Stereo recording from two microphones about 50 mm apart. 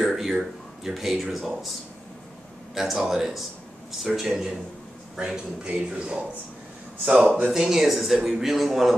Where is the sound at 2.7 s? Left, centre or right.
Centre.